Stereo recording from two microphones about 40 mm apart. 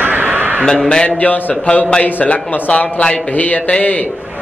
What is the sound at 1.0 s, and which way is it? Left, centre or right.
Speech, left.